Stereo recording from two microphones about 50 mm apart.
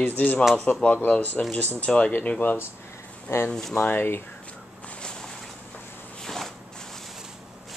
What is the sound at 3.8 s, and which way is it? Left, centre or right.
Speech, left.